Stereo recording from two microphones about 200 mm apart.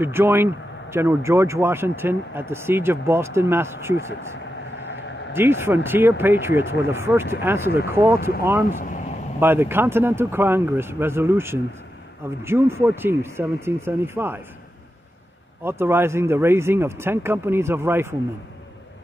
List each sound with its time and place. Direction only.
0.0 s speech: 10° right (ahead or behind)
5.3 s speech: 10° right (ahead or behind)
8.7 s speech: 40° left (ahead or behind)
9.4 s speech: 10° right (ahead or behind)
15.6 s speech: 10° right (ahead or behind)